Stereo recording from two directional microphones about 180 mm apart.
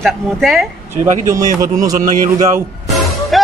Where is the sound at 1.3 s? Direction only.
20° right (ahead or behind).